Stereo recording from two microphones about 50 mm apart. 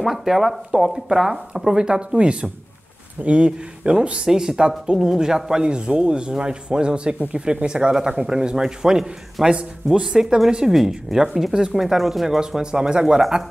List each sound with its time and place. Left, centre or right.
0.0 s speech: centre
12.4 s speech: centre